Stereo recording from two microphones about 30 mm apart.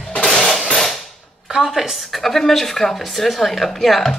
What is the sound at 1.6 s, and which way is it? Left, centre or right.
Speech, centre.